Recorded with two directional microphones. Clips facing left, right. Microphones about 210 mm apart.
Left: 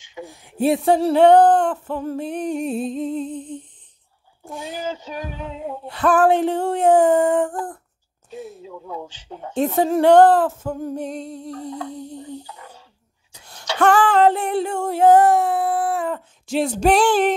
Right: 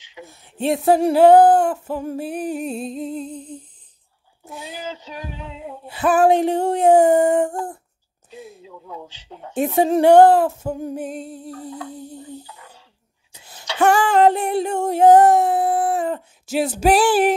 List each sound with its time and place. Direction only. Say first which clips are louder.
0.2 s speech: left 5 dB; 15° left (ahead or behind)
0.7 s music: even; centre (ahead or behind)
4.5 s female singing: left 4 dB; 50° left (ahead or behind)
5.9 s female singing: right 1 dB; 5° right (ahead or behind)
8.6 s speech: left 4 dB; 55° left (ahead or behind)
8.9 s female singing: left 3 dB; 45° left (ahead or behind)
9.5 s female singing: right 1 dB; 10° right (ahead or behind)
11.9 s music: left 2 dB; 5° right (ahead or behind)
12.5 s a sound: left 4 dB; 45° left (ahead or behind)
13.7 s female singing: even; 10° right (ahead or behind)
16.4 s music: even; 5° right (ahead or behind)